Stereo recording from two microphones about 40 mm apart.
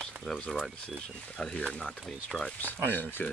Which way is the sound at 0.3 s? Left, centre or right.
Left.